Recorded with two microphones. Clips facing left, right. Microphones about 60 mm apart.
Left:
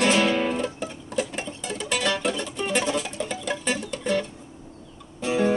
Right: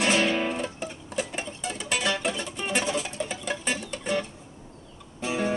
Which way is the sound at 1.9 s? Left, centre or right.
Centre.